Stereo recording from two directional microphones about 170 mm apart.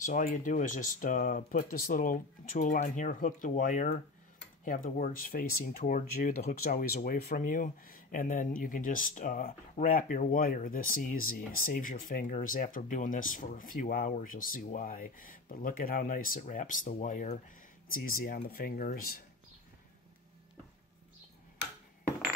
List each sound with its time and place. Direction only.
0.0 s speech: 50° left (ahead or behind)